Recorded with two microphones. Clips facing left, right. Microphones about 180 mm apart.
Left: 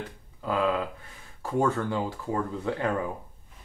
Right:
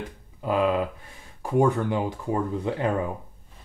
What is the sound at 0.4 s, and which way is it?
Speech, 20° right (ahead or behind).